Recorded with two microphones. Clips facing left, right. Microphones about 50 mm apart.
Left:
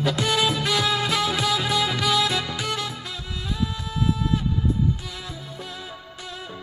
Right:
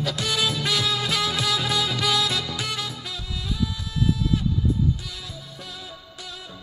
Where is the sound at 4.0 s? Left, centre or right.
Left.